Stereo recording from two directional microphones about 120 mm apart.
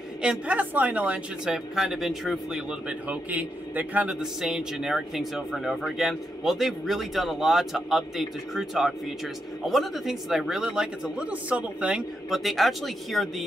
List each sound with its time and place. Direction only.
0.2 s speech: 10° right (ahead or behind)